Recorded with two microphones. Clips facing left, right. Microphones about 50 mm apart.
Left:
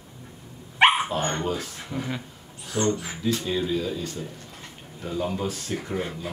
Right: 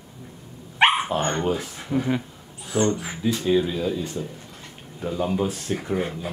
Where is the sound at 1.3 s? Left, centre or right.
Centre.